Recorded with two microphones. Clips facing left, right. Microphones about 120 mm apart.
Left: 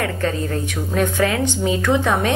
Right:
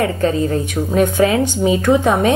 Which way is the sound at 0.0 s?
20° right (ahead or behind).